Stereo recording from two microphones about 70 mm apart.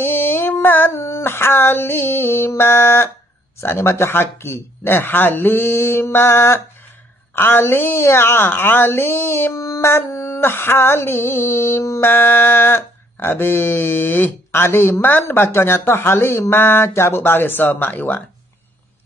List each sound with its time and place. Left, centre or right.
0.0 s female singing: left
0.9 s a woman's voice: left